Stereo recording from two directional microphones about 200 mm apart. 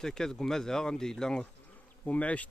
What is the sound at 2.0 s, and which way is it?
Bee, 5° left (ahead or behind).